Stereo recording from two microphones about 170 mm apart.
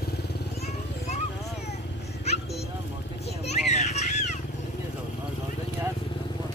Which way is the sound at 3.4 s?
40° left (ahead or behind).